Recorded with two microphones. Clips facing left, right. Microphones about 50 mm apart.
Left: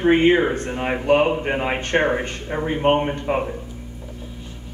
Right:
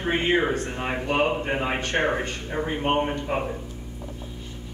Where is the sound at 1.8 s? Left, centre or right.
Left.